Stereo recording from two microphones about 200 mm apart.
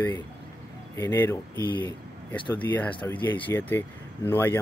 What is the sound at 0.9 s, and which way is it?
Speech, 15° left (ahead or behind).